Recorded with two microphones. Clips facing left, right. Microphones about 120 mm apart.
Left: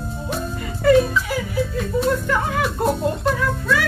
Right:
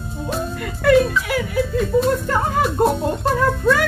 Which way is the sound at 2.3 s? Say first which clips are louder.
Right 2 dB; 40° right (ahead or behind).